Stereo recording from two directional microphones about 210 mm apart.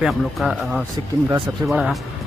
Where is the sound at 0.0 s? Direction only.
Centre (ahead or behind).